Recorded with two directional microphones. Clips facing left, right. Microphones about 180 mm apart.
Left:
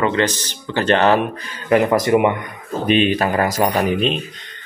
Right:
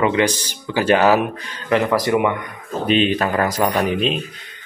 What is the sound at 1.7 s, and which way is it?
Speech, 15° left (ahead or behind).